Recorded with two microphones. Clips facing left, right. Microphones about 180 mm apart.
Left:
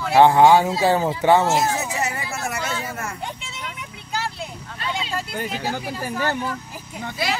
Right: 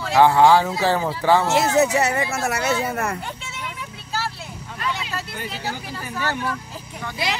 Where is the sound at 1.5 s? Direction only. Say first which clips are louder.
Right 4 dB; 70° right (ahead or behind).